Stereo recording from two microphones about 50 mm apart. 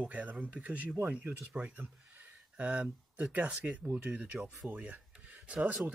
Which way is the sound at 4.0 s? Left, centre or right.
Right.